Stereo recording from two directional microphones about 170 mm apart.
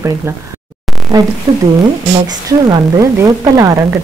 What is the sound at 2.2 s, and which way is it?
A woman's voice, 20° right (ahead or behind).